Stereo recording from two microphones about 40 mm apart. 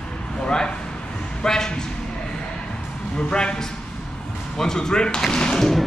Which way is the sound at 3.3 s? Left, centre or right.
Left.